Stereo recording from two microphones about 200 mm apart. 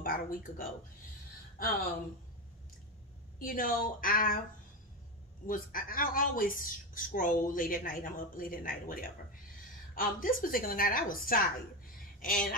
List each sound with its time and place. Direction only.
0.0 s speech: 45° left (ahead or behind)
3.3 s speech: 45° left (ahead or behind)
5.5 s speech: 45° left (ahead or behind)